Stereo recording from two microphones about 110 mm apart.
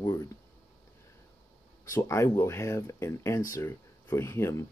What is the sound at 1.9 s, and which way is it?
Speech, 30° left (ahead or behind).